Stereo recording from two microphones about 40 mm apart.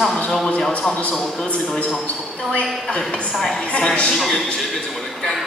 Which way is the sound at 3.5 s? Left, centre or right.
Left.